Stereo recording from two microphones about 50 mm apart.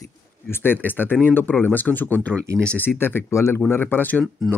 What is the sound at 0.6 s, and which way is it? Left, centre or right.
Speech, left.